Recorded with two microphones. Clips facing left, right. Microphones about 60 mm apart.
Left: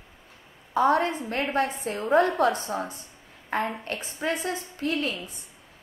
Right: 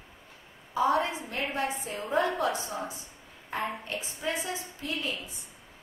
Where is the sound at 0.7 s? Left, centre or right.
Left.